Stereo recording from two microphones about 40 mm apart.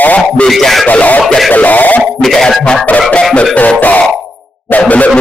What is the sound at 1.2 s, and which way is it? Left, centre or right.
Speech, centre.